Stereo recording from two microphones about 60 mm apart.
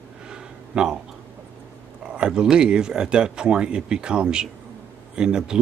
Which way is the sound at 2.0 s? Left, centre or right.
Centre.